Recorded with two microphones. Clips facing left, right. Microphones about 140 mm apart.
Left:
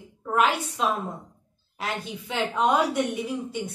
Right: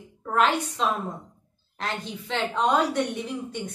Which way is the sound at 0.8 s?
10° left (ahead or behind).